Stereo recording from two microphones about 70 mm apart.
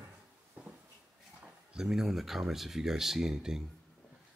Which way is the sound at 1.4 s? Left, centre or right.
Centre.